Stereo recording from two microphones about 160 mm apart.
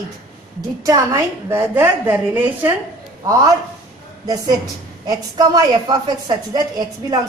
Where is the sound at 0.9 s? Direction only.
20° right (ahead or behind).